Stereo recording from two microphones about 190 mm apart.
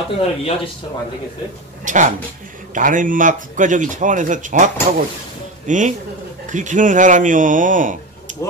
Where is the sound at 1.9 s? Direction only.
40° right (ahead or behind).